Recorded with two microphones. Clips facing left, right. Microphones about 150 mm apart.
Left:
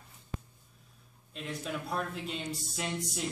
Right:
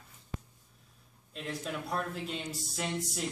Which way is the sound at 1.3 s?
Centre (ahead or behind).